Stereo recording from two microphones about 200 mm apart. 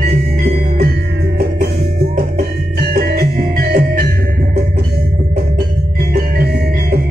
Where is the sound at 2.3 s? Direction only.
50° right (ahead or behind).